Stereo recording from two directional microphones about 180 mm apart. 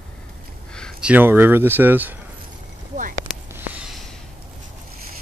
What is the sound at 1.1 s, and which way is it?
Speech, 10° right (ahead or behind).